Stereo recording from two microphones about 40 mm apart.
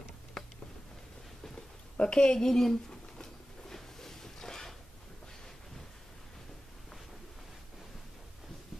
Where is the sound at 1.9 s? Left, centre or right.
Left.